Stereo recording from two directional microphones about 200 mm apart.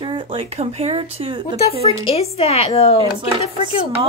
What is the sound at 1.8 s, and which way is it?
A woman's voice, 30° left (ahead or behind).